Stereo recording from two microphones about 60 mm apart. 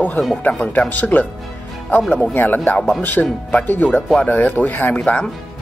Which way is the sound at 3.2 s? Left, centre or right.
Centre.